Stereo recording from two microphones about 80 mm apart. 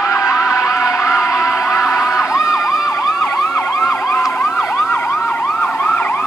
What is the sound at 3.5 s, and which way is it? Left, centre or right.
Emergency vehicle, left.